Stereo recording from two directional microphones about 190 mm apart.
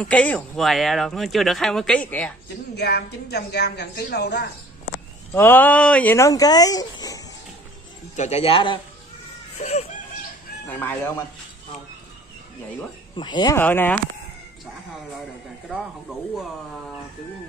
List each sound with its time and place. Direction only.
0.0 s speech: 5° left (ahead or behind)
2.7 s a woman's voice: 60° left (ahead or behind)
5.3 s speech: 10° left (ahead or behind)
8.2 s a man's voice: 35° left (ahead or behind)
9.6 s a sound: 35° left (ahead or behind)
10.7 s speech: 10° left (ahead or behind)
13.1 s speech: 25° left (ahead or behind)
13.6 s speech: 10° left (ahead or behind)
15.7 s speech: centre (ahead or behind)